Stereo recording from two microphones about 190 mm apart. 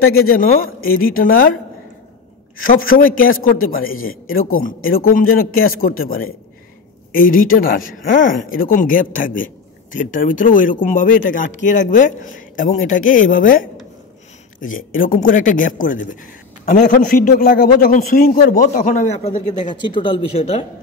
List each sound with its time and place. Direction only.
0.8 s speech: 50° left (ahead or behind)
2.6 s speech: 50° left (ahead or behind)
19.7 s speech: 25° left (ahead or behind)